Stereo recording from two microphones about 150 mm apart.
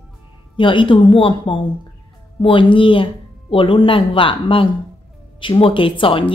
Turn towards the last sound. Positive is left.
turn(degrees=35)  # may be behind; listen again after turning